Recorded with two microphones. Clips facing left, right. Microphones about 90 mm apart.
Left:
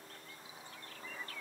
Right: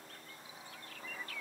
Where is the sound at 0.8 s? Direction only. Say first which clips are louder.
Right 1 dB; 30° left (ahead or behind).